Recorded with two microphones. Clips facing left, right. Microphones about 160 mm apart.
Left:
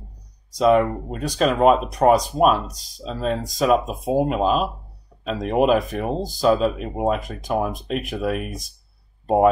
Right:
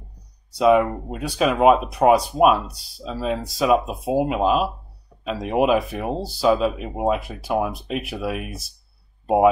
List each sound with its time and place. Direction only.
0.6 s speech: 5° right (ahead or behind)
2.6 s speech: 40° left (ahead or behind)
3.0 s speech: 5° right (ahead or behind)